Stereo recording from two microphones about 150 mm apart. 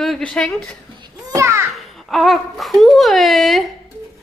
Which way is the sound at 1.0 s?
25° right (ahead or behind).